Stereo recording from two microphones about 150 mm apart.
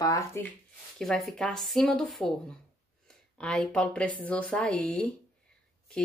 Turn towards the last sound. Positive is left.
turn(degrees=5)  # may be behind; listen again after turning